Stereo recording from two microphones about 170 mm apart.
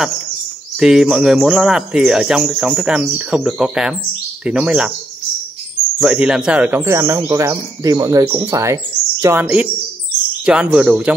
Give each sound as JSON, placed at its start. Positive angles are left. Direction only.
{"t": 0.7, "sound": "speech", "side_deg": -5}
{"t": 5.9, "sound": "speech", "side_deg": -5}